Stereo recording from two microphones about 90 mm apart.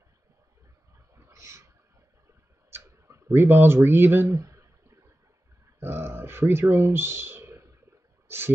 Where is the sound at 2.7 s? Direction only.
30° right (ahead or behind).